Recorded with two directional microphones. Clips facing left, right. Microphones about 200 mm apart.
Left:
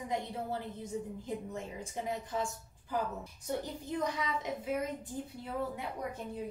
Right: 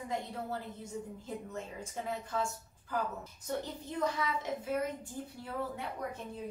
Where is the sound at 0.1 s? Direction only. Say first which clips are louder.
Left 1 dB; 15° left (ahead or behind).